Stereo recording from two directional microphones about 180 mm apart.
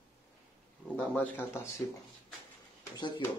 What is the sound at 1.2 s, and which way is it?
Speech, 10° left (ahead or behind).